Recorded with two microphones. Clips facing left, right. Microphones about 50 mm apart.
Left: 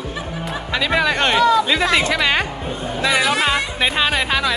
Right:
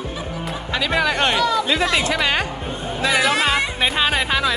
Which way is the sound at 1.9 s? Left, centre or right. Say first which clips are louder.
Left 3 dB; left.